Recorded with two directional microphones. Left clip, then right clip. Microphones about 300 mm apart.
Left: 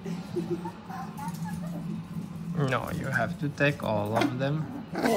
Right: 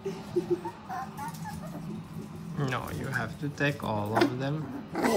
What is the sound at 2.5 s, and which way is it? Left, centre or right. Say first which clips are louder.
Speech: left 4 dB; centre.